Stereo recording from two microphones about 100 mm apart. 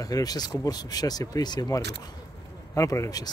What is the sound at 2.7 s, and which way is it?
Speech, 35° left (ahead or behind).